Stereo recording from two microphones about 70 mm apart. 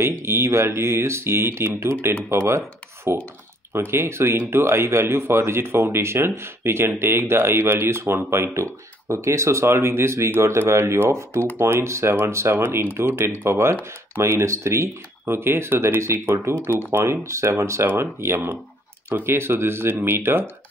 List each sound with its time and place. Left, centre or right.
0.0 s speech: right